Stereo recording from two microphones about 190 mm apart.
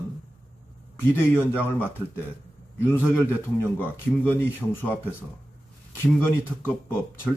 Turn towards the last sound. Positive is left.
turn(degrees=10)  # may be behind; listen again after turning